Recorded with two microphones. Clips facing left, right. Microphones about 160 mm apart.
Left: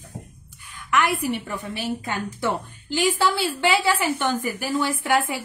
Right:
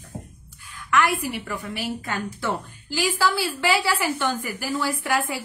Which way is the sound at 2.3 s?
20° left (ahead or behind).